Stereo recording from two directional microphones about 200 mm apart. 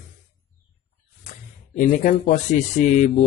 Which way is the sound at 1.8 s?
40° left (ahead or behind).